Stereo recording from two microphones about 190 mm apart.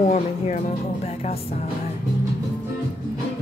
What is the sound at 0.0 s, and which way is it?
Speech, 40° left (ahead or behind).